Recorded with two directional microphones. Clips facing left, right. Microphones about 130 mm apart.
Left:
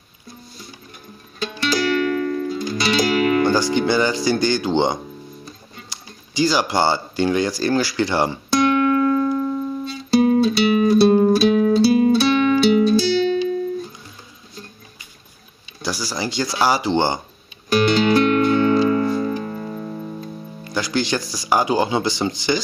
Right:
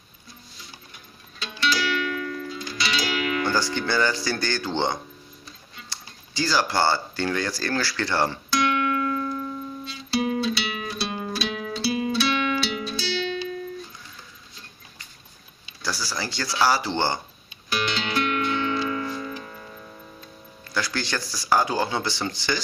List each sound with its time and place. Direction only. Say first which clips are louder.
1.4 s music: left 5 dB; 45° left (ahead or behind)
3.4 s speech: left 7 dB; 15° left (ahead or behind)
8.5 s music: left 7 dB; 45° left (ahead or behind)
15.8 s speech: left 5 dB; 15° left (ahead or behind)
17.6 s music: left 12 dB; 45° left (ahead or behind)
20.6 s speech: left 6 dB; 15° left (ahead or behind)